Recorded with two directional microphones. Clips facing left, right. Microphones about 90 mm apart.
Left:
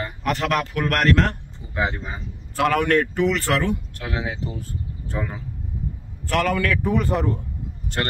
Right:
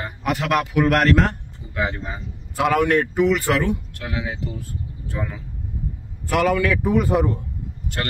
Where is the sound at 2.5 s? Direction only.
10° right (ahead or behind).